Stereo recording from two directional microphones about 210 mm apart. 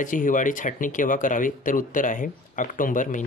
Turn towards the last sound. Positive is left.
turn(degrees=40)  # may be behind; listen again after turning